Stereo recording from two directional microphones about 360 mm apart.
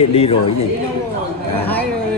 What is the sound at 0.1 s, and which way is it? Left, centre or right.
Speech, centre.